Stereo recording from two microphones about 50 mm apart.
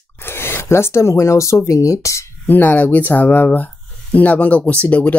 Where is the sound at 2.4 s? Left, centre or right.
Left.